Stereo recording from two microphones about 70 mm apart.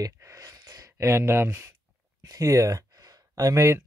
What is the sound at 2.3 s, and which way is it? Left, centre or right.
Speech, right.